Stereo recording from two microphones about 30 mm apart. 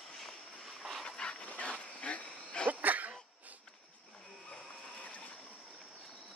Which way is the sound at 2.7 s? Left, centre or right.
Right.